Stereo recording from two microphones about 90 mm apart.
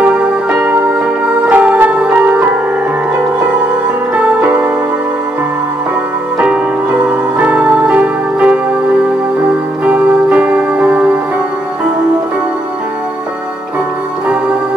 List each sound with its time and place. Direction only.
0.0 s music: 15° right (ahead or behind)
4.1 s music: 15° right (ahead or behind)
6.3 s music: 15° right (ahead or behind)
9.8 s music: 15° right (ahead or behind)